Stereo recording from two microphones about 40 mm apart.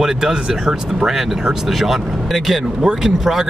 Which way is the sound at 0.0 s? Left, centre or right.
Centre.